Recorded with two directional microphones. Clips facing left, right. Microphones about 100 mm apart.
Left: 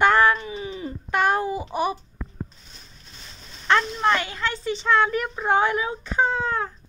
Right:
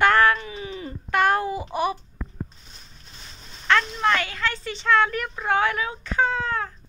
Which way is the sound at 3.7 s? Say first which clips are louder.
Left 1 dB; 25° left (ahead or behind).